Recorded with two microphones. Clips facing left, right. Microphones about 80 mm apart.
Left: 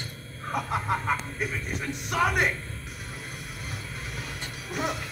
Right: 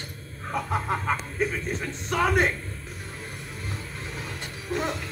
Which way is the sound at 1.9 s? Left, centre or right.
Centre.